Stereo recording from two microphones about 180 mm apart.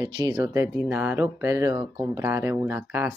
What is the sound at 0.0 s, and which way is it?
Speech, 15° right (ahead or behind).